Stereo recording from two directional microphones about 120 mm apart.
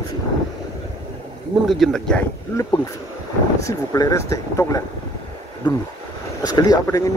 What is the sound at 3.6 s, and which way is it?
A man's voice, 30° left (ahead or behind).